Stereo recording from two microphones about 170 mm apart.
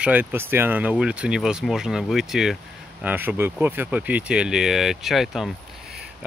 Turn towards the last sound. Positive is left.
turn(degrees=0)  # may be behind; listen again after turning